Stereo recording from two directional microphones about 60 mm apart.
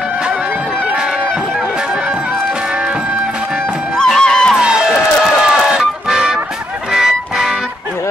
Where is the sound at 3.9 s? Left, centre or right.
Centre.